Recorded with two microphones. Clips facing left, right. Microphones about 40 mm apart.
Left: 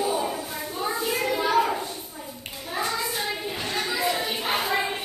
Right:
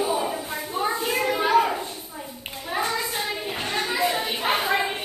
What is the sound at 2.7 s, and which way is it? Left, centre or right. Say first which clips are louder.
Child singing: right 2 dB; right.